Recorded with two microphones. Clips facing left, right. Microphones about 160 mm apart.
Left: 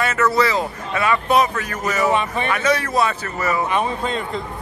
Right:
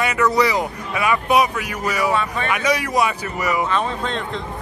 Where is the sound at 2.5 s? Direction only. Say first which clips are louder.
Even; 15° right (ahead or behind).